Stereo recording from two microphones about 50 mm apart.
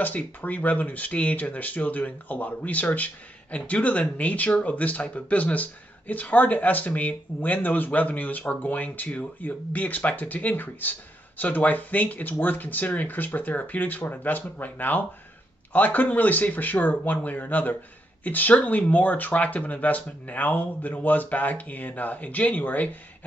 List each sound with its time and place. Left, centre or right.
0.4 s speech: left